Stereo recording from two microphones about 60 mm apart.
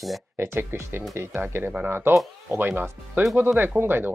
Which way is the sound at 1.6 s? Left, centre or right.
Right.